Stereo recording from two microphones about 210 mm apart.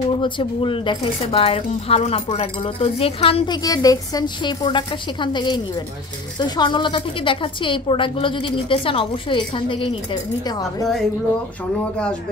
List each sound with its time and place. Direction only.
0.2 s speech: 25° left (ahead or behind)